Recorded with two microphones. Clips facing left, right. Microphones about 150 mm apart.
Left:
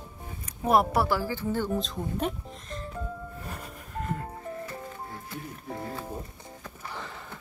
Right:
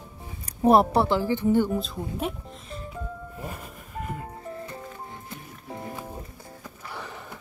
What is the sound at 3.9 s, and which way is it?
Music, 5° right (ahead or behind).